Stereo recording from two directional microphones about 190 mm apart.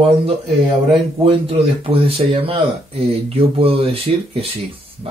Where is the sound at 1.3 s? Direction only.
30° right (ahead or behind).